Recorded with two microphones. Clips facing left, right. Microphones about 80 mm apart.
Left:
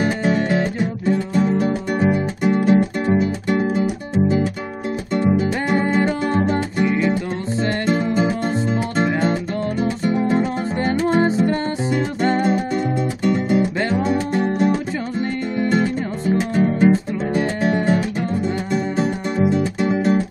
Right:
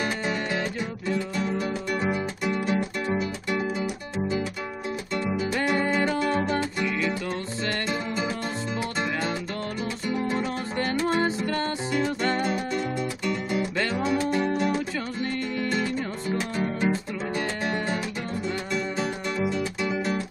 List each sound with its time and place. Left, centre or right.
0.0 s music: left
5.6 s music: left
7.9 s music: left
12.5 s music: left
13.7 s music: left
18.7 s music: left